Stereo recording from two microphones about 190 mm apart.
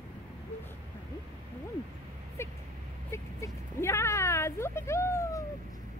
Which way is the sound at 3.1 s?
15° left (ahead or behind).